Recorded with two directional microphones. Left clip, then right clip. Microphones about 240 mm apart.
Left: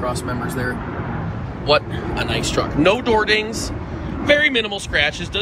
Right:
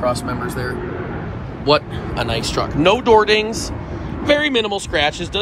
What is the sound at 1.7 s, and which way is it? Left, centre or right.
Speech, centre.